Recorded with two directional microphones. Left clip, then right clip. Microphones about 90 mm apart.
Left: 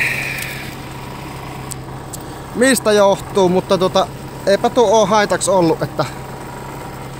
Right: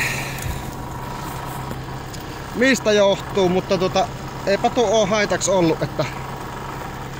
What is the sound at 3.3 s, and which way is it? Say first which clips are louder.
Speech: left 5 dB; 50° left (ahead or behind).